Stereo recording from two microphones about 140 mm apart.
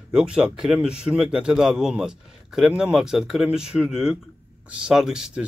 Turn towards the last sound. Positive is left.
turn(degrees=-5)  # may be behind; listen again after turning